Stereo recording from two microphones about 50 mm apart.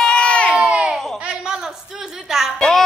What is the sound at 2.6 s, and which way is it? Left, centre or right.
Music, centre.